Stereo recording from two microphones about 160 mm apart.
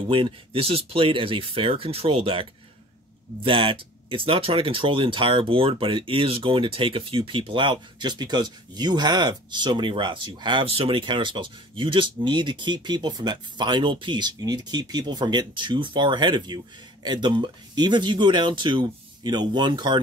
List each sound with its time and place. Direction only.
0.1 s speech: 35° right (ahead or behind)
3.4 s speech: 35° right (ahead or behind)